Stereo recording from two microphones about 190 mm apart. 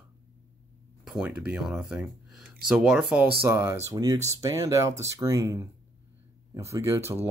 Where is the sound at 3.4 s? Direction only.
15° right (ahead or behind).